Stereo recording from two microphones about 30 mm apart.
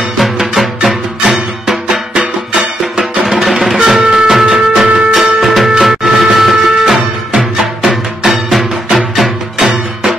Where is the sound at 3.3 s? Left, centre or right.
Centre.